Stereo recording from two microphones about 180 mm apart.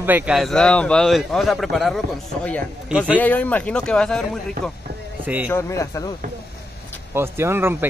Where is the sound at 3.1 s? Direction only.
10° left (ahead or behind).